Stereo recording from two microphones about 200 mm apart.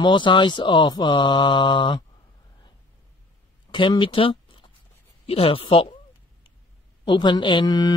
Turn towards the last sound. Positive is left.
turn(degrees=20)  # may be behind; listen again after turning